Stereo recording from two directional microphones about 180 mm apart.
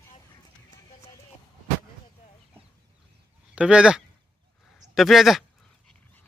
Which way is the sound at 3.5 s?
5° right (ahead or behind).